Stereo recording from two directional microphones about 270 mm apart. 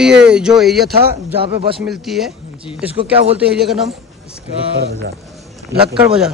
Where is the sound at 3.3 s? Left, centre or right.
Centre.